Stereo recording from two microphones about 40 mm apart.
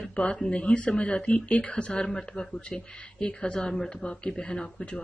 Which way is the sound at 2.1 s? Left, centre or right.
Centre.